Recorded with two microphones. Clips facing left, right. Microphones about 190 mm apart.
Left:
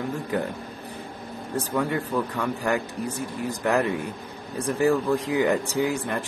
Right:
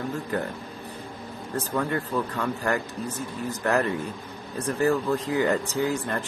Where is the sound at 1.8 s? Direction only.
15° left (ahead or behind).